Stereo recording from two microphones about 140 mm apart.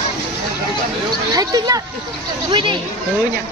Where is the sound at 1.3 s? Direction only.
25° right (ahead or behind).